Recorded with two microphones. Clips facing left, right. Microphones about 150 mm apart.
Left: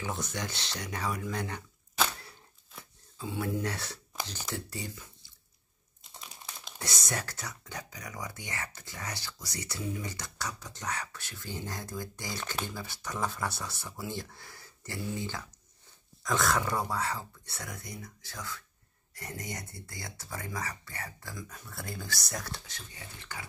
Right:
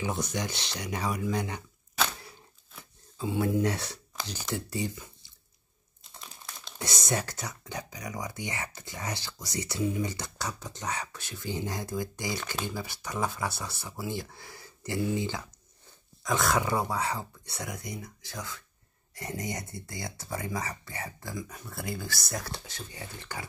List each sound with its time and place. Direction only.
0.0 s speech: 15° right (ahead or behind)
3.2 s speech: 20° right (ahead or behind)
6.8 s speech: 20° right (ahead or behind); by 22.5 s 5° right (ahead or behind)
22.5 s speech: 30° right (ahead or behind)